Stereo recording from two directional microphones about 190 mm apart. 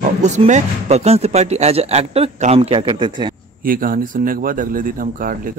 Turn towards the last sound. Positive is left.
turn(degrees=-45)  # may be behind; listen again after turning